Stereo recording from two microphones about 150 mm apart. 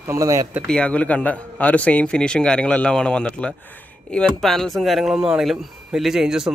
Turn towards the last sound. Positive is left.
turn(degrees=-5)  # may be behind; listen again after turning